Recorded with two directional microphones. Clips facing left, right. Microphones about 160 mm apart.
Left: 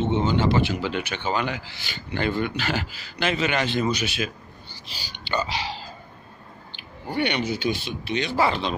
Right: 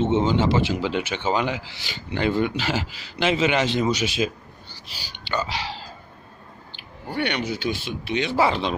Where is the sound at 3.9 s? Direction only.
90° right.